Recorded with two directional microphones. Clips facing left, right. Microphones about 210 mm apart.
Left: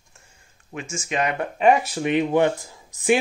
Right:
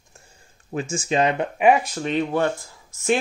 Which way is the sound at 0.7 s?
35° right (ahead or behind).